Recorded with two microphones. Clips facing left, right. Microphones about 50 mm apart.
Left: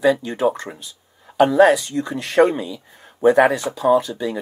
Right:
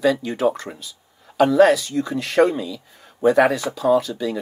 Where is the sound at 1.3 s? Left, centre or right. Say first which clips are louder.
Left 1 dB; left.